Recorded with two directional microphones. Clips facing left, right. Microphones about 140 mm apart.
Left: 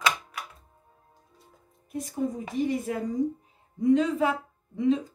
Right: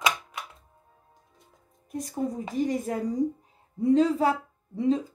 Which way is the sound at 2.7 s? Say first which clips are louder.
Right 1 dB; 40° right (ahead or behind).